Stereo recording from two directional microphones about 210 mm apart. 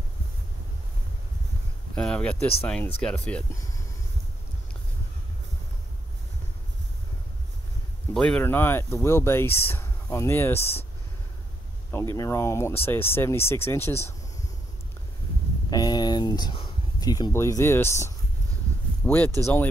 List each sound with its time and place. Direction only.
2.0 s speech: 5° left (ahead or behind)
8.1 s speech: 5° left (ahead or behind)
12.2 s speech: 15° left (ahead or behind)
15.7 s a sound: 20° left (ahead or behind)
19.0 s speech: 10° left (ahead or behind)